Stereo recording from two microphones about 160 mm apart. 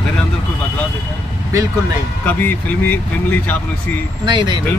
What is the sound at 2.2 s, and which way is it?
Speech, 10° left (ahead or behind).